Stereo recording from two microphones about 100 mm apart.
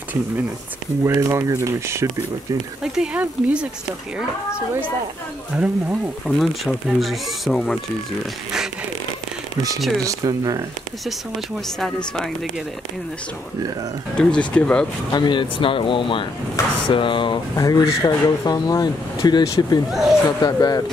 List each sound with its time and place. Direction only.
1.0 s speech: 30° right (ahead or behind)
2.8 s speech: 10° right (ahead or behind)
5.5 s speech: 10° right (ahead or behind)
6.2 s speech: centre (ahead or behind)
10.0 s speech: 40° right (ahead or behind)
14.1 s speech: 10° left (ahead or behind)
15.1 s speech: 50° left (ahead or behind)
17.6 s speech: 40° left (ahead or behind)
19.9 s speech: centre (ahead or behind)
20.2 s speech: 40° left (ahead or behind)